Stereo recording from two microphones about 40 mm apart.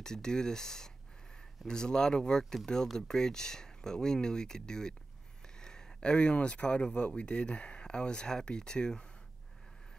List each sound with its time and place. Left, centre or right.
0.0 s speech: centre
5.4 s a sound: centre
6.4 s speech: left